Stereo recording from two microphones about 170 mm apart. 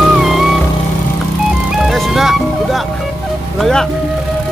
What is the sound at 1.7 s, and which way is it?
Music, centre (ahead or behind).